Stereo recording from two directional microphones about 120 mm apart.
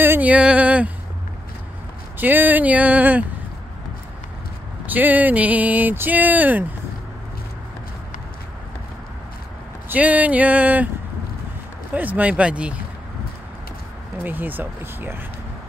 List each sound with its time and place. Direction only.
0.0 s speech: 15° right (ahead or behind)
2.1 s speech: 15° right (ahead or behind)
4.8 s speech: 15° right (ahead or behind)
9.8 s speech: 10° right (ahead or behind)
11.9 s speech: 15° right (ahead or behind)
14.1 s speech: 15° right (ahead or behind)